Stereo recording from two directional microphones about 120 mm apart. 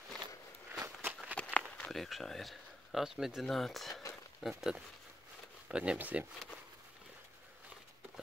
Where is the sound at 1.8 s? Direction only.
Centre (ahead or behind).